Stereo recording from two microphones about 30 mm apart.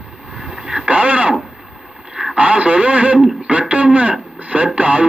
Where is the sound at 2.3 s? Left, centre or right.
Right.